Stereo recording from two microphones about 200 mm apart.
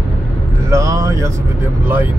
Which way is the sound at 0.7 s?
15° right (ahead or behind).